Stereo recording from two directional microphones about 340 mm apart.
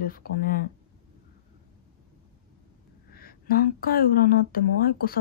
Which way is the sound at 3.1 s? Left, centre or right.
Left.